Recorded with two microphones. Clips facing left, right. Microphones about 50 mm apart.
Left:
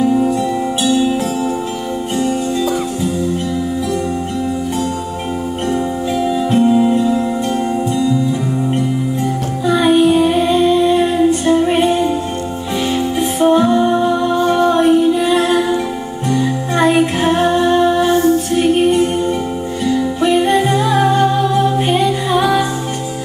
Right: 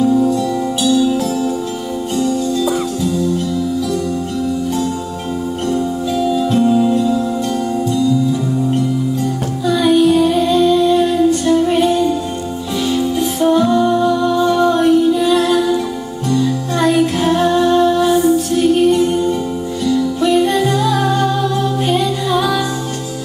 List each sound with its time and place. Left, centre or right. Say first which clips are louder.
0.0 s music: even; left
2.1 s music: right 1 dB; left
5.7 s music: even; left